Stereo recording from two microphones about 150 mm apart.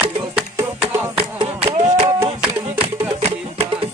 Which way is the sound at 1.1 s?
40° right (ahead or behind).